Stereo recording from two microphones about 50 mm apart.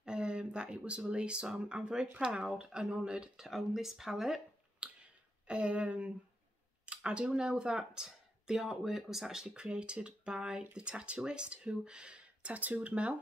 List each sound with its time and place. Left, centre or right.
0.0 s speech: centre
3.4 s speech: centre
4.8 s a sound: right
5.5 s speech: right
6.9 s a sound: right
7.3 s speech: centre